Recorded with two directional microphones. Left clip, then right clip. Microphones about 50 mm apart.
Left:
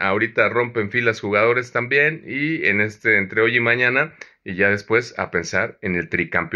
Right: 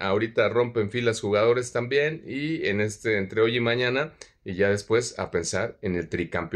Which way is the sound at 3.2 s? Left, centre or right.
Right.